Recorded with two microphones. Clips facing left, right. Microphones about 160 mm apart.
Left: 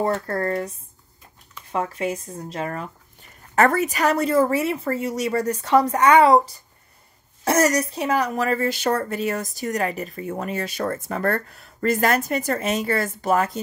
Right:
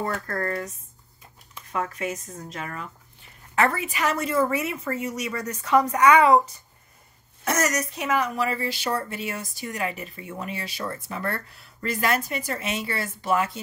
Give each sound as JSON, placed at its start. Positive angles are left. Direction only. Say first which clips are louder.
{"t": 0.0, "sound": "a woman's voice", "louder": "left 5 dB", "side_deg": 30}